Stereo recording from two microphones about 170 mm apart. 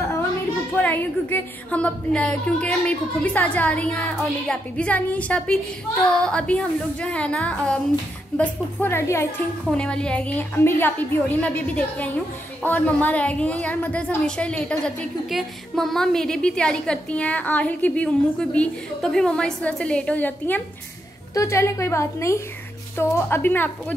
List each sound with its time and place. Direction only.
0.8 s a woman's voice: 10° left (ahead or behind)